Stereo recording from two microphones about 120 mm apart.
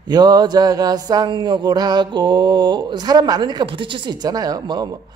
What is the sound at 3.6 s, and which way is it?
Speech, 45° right (ahead or behind).